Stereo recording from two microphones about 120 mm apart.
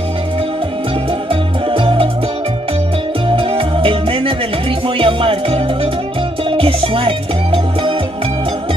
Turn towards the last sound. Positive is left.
turn(degrees=-50)  # may be behind; listen again after turning